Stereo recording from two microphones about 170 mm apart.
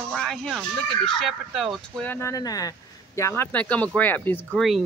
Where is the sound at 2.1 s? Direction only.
15° left (ahead or behind).